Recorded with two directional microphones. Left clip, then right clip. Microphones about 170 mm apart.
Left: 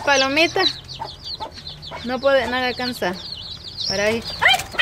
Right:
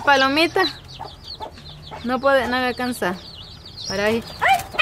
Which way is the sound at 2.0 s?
15° right (ahead or behind).